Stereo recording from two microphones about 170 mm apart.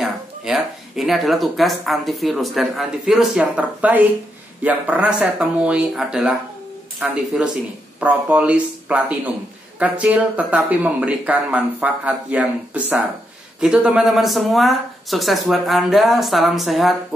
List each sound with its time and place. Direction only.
0.0 s speech: centre (ahead or behind)